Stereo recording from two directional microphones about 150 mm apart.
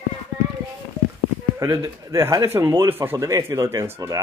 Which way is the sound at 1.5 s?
20° right (ahead or behind).